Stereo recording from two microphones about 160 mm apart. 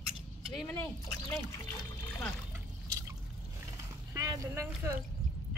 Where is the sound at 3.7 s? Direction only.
20° right (ahead or behind).